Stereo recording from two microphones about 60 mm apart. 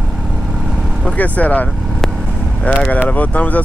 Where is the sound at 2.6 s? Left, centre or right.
Left.